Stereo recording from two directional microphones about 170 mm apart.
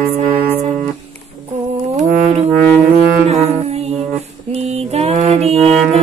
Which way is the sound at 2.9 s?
40° right (ahead or behind).